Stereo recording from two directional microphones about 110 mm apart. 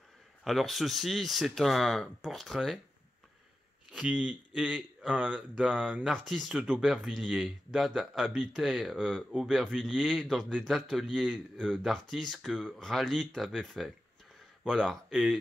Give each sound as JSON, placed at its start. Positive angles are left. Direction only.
{"t": 0.4, "sound": "speech", "side_deg": 0}
{"t": 3.9, "sound": "speech", "side_deg": -10}